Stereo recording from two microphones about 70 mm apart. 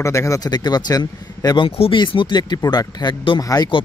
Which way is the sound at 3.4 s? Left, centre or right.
Left.